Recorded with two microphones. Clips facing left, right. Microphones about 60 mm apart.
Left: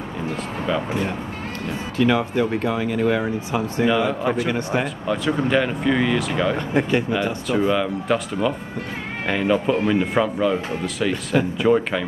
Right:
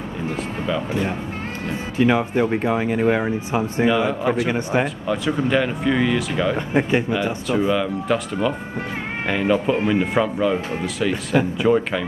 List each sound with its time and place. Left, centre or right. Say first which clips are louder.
2.0 s speech: right 1 dB; right
3.8 s speech: right 1 dB; centre
4.5 s speech: right 2 dB; right
5.0 s speech: even; centre
6.7 s speech: right 1 dB; centre
7.1 s speech: even; centre